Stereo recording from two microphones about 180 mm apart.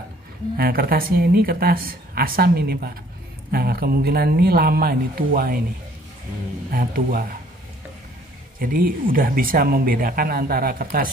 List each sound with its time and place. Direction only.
0.6 s speech: 55° right (ahead or behind)
6.7 s speech: 55° right (ahead or behind)
8.5 s speech: 50° right (ahead or behind)